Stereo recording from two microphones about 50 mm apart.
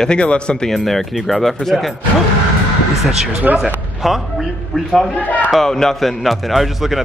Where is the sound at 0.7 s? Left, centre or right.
Centre.